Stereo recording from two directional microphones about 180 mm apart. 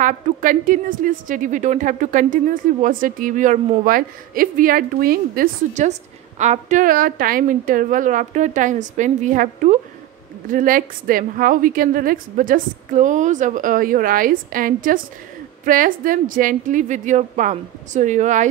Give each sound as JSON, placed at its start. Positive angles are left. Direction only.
{"t": 0.0, "sound": "a woman's voice", "side_deg": -50}